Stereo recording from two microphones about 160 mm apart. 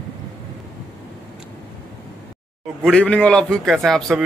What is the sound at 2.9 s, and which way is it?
A man's voice, 10° left (ahead or behind).